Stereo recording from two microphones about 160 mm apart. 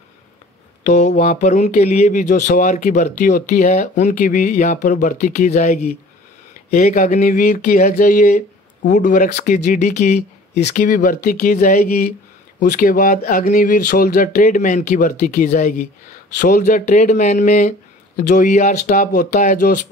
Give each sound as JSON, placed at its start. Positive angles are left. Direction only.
{"t": 0.8, "sound": "speech", "side_deg": 50}
{"t": 12.6, "sound": "speech", "side_deg": 60}